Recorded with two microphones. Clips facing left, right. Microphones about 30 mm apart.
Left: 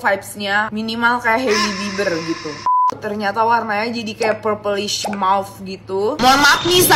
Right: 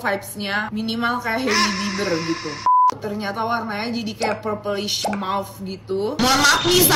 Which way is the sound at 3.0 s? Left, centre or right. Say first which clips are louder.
Left 7 dB; left.